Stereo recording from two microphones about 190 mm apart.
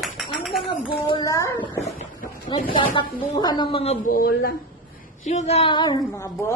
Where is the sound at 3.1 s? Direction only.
20° left (ahead or behind).